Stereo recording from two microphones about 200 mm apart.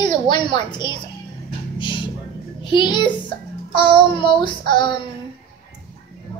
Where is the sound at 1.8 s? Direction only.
25° left (ahead or behind).